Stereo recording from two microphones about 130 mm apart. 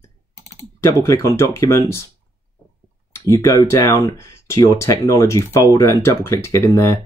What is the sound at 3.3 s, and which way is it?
Speech, 30° left (ahead or behind).